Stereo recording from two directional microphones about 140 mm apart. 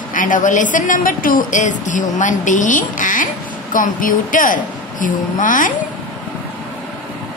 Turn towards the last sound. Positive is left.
turn(degrees=70)  # may be behind; listen again after turning